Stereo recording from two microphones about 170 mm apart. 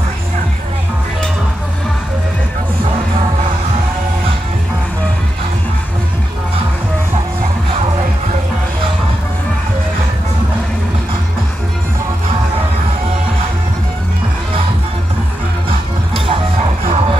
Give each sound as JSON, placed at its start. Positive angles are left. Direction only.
{"t": 16.8, "sound": "music", "side_deg": -35}